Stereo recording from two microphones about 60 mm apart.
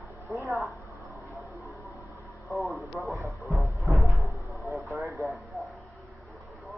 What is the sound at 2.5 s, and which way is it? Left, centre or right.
Radio, centre.